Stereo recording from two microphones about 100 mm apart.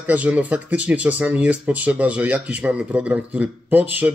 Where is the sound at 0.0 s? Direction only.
15° right (ahead or behind).